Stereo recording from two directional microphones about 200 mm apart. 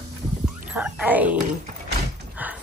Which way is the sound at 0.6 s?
5° right (ahead or behind).